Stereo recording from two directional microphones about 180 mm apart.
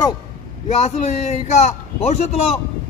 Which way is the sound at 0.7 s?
40° left (ahead or behind).